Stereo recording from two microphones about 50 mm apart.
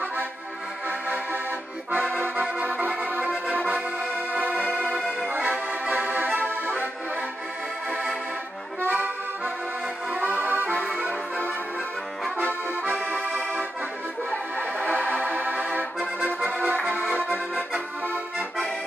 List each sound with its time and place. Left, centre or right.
2.1 s accordion: right
4.3 s music: right
5.9 s music: right
8.8 s accordion: right
12.4 s accordion: right
14.3 s music: left
15.2 s music: right